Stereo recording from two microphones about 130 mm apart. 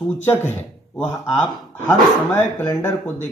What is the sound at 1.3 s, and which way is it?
Speech, 15° left (ahead or behind).